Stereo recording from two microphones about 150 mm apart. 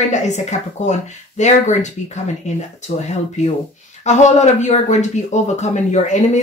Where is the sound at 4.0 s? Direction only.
50° left (ahead or behind).